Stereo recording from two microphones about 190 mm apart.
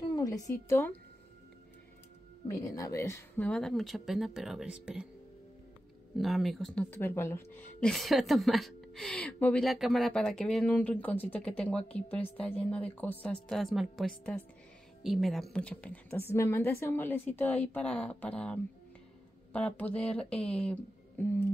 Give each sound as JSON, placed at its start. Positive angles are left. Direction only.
{"t": 0.0, "sound": "a woman's voice", "side_deg": 20}
{"t": 2.6, "sound": "a woman's voice", "side_deg": 15}
{"t": 6.1, "sound": "a woman's voice", "side_deg": 0}
{"t": 7.9, "sound": "a woman's voice", "side_deg": 0}